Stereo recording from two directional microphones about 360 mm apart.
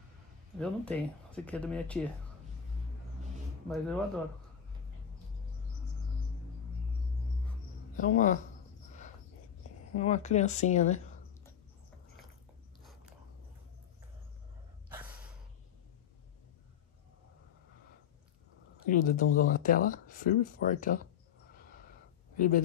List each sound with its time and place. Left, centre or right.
0.6 s speech: centre
3.6 s speech: centre
7.9 s speech: left
9.9 s speech: centre
18.9 s speech: left
21.5 s gasp: left